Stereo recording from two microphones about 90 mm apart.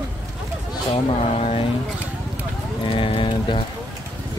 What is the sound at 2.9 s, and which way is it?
Speech, 80° left.